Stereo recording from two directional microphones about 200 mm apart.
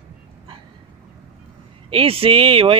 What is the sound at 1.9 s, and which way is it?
Speech, 30° right (ahead or behind).